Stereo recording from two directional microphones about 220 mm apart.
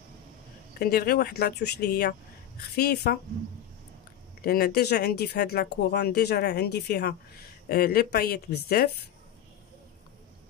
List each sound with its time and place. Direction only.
0.7 s speech: 45° left (ahead or behind)
4.4 s speech: 45° left (ahead or behind)